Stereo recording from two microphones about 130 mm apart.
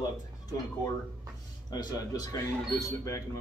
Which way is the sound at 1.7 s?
30° left (ahead or behind).